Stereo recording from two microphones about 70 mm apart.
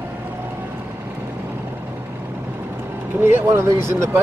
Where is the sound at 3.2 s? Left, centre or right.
Right.